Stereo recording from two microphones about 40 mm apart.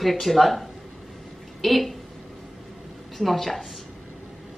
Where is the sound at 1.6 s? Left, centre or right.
Centre.